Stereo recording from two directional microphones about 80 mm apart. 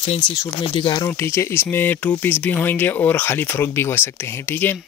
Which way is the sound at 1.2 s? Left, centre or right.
Left.